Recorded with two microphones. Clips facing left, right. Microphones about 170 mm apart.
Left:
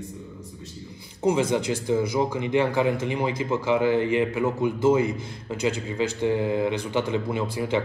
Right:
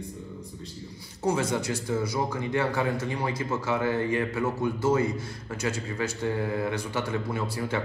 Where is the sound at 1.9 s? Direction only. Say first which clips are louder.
Left 5 dB; 15° left (ahead or behind).